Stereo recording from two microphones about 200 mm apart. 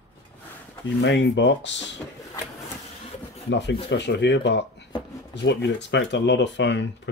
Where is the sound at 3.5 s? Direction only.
60° left (ahead or behind).